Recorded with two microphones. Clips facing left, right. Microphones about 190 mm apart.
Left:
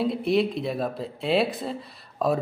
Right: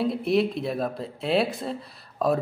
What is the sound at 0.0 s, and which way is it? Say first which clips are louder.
Speech: even; centre (ahead or behind).